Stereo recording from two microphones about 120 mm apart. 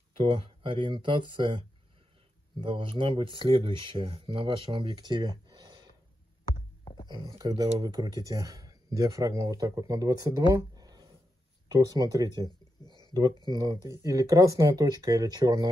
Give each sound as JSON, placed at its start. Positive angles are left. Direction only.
{"t": 0.2, "sound": "speech", "side_deg": -45}
{"t": 7.1, "sound": "speech", "side_deg": -35}
{"t": 10.5, "sound": "a sound", "side_deg": -30}
{"t": 11.7, "sound": "speech", "side_deg": -30}
{"t": 12.4, "sound": "a sound", "side_deg": 35}
{"t": 13.5, "sound": "speech", "side_deg": -30}